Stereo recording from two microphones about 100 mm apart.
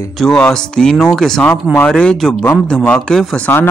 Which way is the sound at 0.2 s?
5° left (ahead or behind).